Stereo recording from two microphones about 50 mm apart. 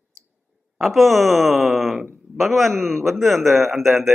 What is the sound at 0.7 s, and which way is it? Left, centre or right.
A man's voice, centre.